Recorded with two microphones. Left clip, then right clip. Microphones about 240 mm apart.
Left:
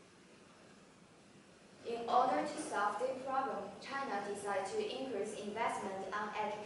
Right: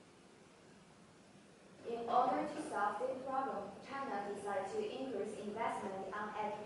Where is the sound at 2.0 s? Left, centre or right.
Centre.